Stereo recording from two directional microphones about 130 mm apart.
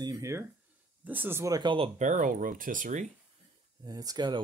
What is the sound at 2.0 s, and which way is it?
Speech, 80° right.